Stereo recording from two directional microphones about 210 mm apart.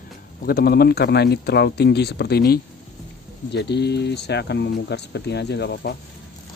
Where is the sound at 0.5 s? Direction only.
45° left (ahead or behind).